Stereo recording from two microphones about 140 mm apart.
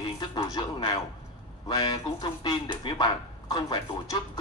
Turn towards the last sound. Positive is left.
turn(degrees=35)  # may be behind; listen again after turning